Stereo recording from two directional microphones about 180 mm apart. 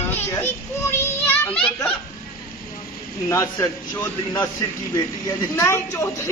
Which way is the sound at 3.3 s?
15° left (ahead or behind).